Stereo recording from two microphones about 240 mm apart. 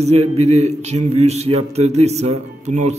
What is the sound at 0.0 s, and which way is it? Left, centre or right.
Speech, right.